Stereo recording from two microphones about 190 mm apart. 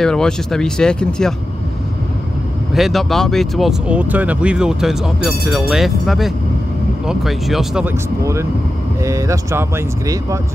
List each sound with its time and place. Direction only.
0.0 s speech: 5° left (ahead or behind)
2.7 s speech: centre (ahead or behind)
8.2 s speech: 15° right (ahead or behind)